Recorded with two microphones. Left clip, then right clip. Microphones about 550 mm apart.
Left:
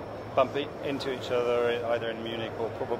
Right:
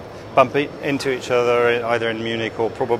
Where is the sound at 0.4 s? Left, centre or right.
Right.